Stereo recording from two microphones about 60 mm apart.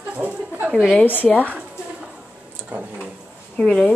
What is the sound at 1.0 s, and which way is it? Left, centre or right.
Speech, left.